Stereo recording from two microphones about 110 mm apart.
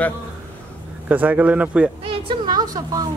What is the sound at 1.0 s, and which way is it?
Speech, 15° right (ahead or behind).